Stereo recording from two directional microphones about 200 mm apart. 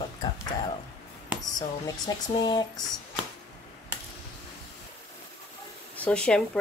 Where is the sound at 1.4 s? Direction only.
20° left (ahead or behind).